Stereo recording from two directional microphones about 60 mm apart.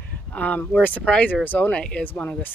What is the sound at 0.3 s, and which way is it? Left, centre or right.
Speech, left.